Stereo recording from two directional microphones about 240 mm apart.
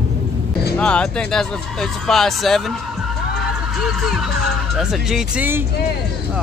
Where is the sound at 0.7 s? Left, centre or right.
Centre.